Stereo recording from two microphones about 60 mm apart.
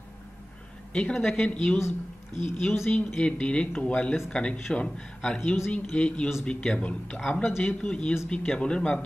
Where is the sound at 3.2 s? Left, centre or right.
Centre.